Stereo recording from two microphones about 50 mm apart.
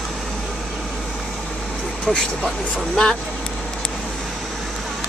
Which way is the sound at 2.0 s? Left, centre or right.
Centre.